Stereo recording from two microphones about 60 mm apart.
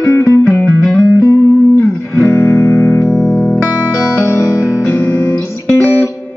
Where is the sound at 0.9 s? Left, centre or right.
Left.